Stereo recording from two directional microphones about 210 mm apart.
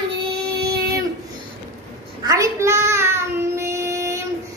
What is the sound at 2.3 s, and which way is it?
Child singing, 15° right (ahead or behind).